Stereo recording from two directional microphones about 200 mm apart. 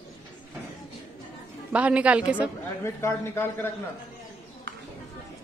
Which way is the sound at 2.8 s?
15° left (ahead or behind).